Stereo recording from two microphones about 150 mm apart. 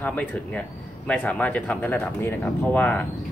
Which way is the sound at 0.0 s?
10° left (ahead or behind).